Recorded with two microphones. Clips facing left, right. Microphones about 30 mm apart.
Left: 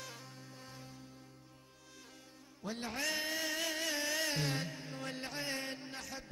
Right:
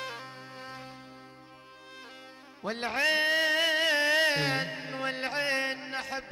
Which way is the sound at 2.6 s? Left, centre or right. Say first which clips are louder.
Right 10 dB; right.